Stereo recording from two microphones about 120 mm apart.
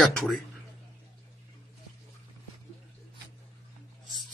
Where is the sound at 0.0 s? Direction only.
5° left (ahead or behind).